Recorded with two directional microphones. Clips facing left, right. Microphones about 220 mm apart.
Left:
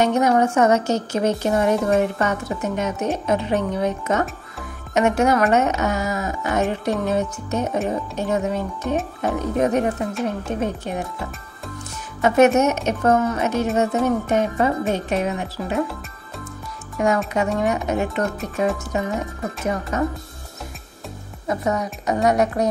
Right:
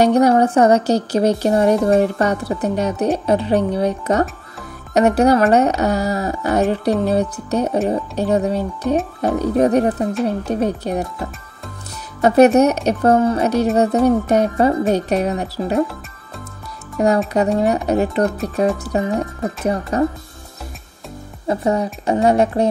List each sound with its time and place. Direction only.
0.0 s speech: 35° right (ahead or behind)
12.2 s speech: 35° right (ahead or behind)
17.0 s speech: 35° right (ahead or behind)
21.5 s a woman's voice: 30° right (ahead or behind)